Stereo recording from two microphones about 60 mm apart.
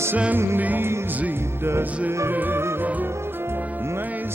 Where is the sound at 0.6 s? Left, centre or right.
Right.